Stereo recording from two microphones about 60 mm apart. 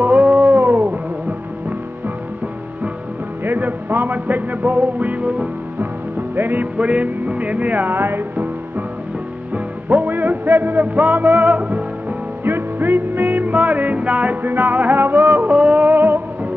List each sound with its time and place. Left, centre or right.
0.0 s a sound: right
0.5 s music: right
3.4 s music: right
9.8 s music: right
12.4 s music: right
15.5 s music: right
15.9 s music: right